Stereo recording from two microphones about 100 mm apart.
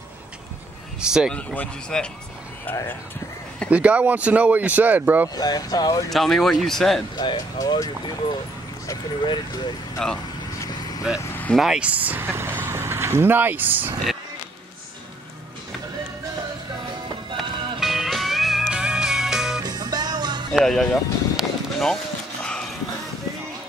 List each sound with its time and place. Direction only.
1.0 s speech: 5° right (ahead or behind)
1.3 s speech: 15° left (ahead or behind)
3.7 s speech: 15° right (ahead or behind)
5.3 s speech: 40° left (ahead or behind)
6.0 s speech: centre (ahead or behind)
7.2 s speech: 45° left (ahead or behind)
9.2 s vehicle: 50° left (ahead or behind)
10.0 s speech: 5° left (ahead or behind)
11.1 s speech: 5° right (ahead or behind)
17.4 s music: centre (ahead or behind)
19.6 s music: 40° right (ahead or behind)
20.6 s music: 5° left (ahead or behind)